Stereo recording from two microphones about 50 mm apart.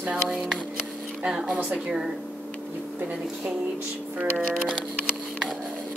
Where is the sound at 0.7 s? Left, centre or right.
Centre.